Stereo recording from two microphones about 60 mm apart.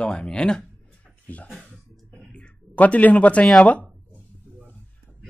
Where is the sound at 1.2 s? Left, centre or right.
Left.